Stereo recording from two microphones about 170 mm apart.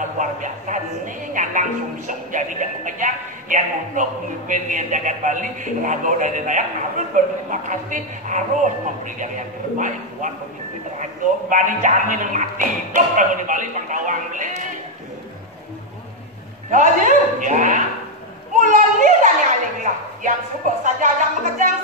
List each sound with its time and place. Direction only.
0.2 s speech: 50° right (ahead or behind)
16.7 s speech: 50° right (ahead or behind)